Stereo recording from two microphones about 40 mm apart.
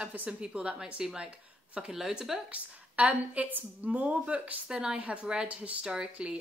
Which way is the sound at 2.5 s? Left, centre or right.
Right.